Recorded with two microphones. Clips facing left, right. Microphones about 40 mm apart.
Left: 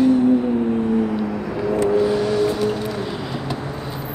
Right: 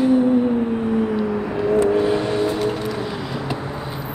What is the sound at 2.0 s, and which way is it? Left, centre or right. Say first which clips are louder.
Vehicle: left 1 dB; right.